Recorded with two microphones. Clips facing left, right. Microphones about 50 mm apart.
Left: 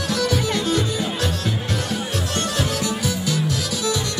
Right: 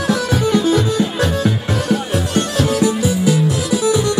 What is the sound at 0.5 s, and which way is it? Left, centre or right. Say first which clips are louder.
Music: right 7 dB; centre.